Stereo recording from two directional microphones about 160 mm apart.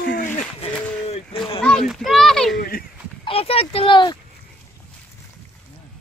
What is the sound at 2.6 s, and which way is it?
Speech, 70° left (ahead or behind).